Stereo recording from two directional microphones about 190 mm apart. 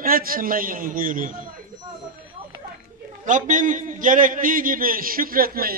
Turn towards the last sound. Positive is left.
turn(degrees=-50)  # may be behind; listen again after turning